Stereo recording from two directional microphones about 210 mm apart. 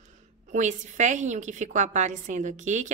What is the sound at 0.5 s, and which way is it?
A woman's voice, 35° right (ahead or behind).